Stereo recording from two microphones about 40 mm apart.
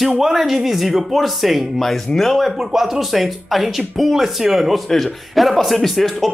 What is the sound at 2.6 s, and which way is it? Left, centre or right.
A man's voice, centre.